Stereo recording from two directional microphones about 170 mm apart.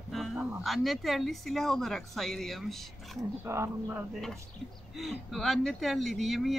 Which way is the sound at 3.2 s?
15° right (ahead or behind).